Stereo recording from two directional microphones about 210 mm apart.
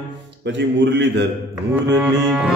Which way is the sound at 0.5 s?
55° right (ahead or behind).